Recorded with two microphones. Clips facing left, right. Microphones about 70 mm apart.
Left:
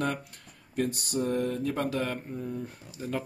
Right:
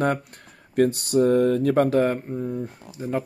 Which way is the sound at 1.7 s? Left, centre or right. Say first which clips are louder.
Right 11 dB; right.